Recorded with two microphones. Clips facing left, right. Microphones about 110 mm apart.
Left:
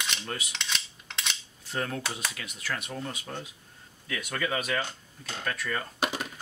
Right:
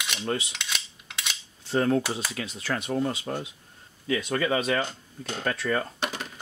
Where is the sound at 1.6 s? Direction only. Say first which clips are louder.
Right 10 dB; 30° right (ahead or behind).